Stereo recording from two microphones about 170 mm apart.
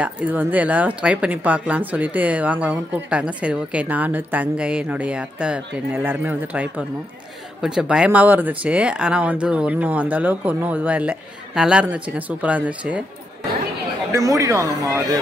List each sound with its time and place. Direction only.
0.0 s speech: 10° right (ahead or behind)
14.1 s speech: 20° right (ahead or behind)